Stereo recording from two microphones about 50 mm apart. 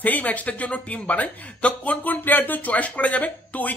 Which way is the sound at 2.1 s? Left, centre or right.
Left.